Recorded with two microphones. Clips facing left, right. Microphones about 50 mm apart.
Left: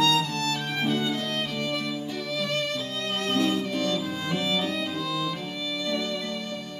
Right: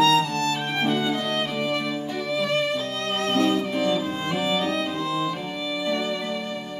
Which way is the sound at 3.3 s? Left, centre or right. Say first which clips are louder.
Right 4 dB; centre.